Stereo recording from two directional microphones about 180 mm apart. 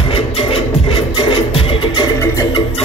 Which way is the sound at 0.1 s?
30° left (ahead or behind).